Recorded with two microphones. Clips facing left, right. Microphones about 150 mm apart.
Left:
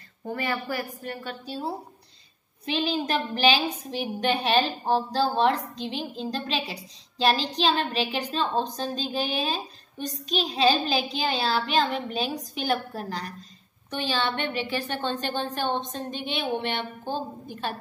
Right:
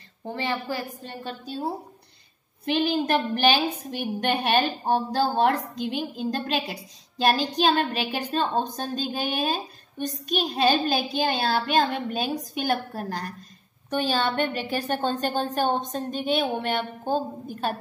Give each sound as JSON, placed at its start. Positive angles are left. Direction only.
{"t": 0.3, "sound": "a woman's voice", "side_deg": -25}
{"t": 2.6, "sound": "a woman's voice", "side_deg": -55}